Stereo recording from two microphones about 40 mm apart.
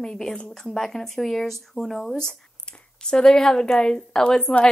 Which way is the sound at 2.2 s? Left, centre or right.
Centre.